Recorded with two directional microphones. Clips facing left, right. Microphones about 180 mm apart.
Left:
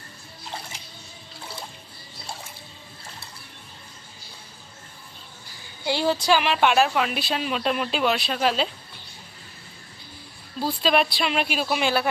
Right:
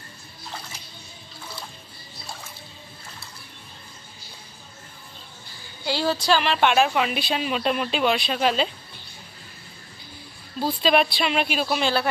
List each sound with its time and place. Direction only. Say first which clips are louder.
5.9 s a woman's voice: left 1 dB; 20° left (ahead or behind); by 8.6 s centre (ahead or behind)
10.6 s speech: right 1 dB; centre (ahead or behind)